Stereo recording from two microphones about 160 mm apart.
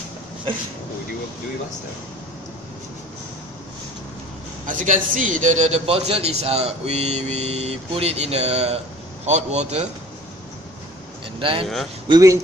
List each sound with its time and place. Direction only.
4.6 s a man's voice: 55° right (ahead or behind)
11.3 s speech: 30° right (ahead or behind)
11.6 s speech: centre (ahead or behind)
12.1 s a man's voice: 20° right (ahead or behind)